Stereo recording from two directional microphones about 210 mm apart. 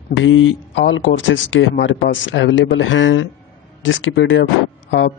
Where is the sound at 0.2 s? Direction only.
70° left (ahead or behind).